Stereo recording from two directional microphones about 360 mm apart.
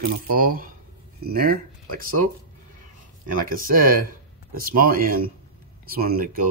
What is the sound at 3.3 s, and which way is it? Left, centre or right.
Speech, right.